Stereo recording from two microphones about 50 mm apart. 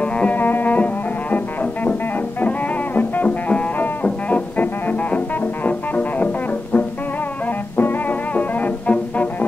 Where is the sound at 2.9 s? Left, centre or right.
Left.